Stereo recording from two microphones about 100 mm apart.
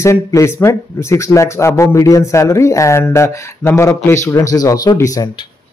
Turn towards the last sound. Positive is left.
turn(degrees=35)  # may be behind; listen again after turning